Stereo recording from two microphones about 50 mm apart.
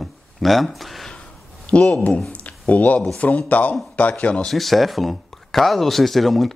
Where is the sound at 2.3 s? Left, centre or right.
Left.